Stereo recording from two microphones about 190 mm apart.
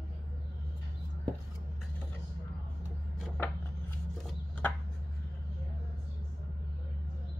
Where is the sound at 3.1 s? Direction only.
Centre (ahead or behind).